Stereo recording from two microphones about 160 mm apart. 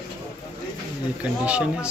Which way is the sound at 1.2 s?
5° right (ahead or behind).